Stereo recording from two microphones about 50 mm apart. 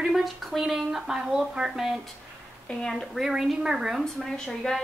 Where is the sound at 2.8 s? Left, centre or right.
Centre.